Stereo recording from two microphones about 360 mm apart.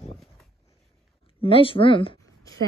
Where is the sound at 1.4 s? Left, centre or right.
Centre.